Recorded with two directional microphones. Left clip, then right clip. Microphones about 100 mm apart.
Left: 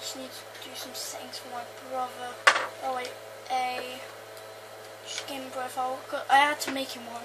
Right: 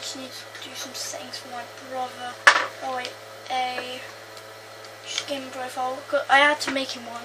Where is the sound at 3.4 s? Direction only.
20° left (ahead or behind).